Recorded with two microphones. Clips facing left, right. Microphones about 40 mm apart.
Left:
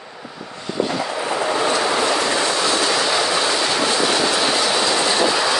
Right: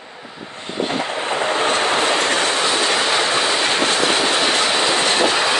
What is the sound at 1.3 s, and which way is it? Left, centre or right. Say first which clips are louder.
Train: right 1 dB; right.